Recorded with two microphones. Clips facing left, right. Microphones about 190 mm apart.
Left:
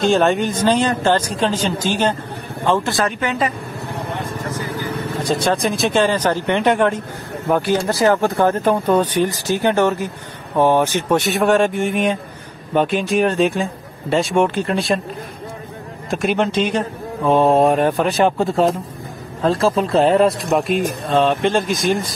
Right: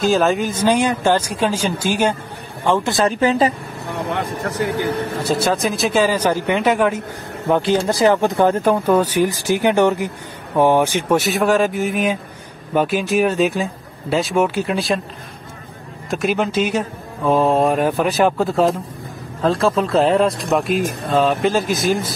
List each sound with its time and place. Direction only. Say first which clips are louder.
0.0 s speech: left 1 dB; centre (ahead or behind); by 3.1 s 20° right (ahead or behind)
3.1 s speech: right 5 dB; 35° right (ahead or behind)
4.1 s speech: right 3 dB; 65° right (ahead or behind)
5.2 s speech: left 1 dB; 5° right (ahead or behind)
7.4 s speech: right 1 dB; 20° right (ahead or behind); by 15.0 s 5° right (ahead or behind)
16.1 s speech: left 1 dB; centre (ahead or behind)